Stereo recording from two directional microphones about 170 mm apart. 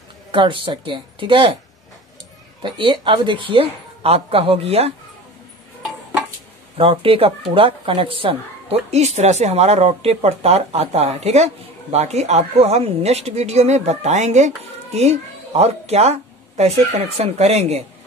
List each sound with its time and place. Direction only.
0.3 s speech: 30° right (ahead or behind)
2.6 s speech: 30° right (ahead or behind)
6.8 s speech: 35° right (ahead or behind)